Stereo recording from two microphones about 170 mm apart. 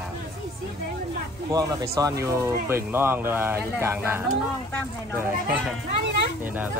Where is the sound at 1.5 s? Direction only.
20° right (ahead or behind).